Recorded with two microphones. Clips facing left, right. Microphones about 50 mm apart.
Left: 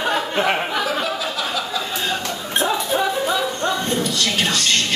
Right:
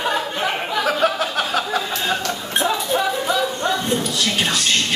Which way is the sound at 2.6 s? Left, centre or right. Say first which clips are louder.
Even; centre.